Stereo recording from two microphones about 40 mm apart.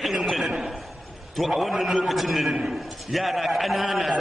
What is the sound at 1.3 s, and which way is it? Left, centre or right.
A man's voice, centre.